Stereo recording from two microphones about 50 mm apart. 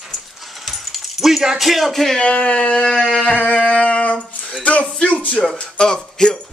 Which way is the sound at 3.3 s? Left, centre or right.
Left.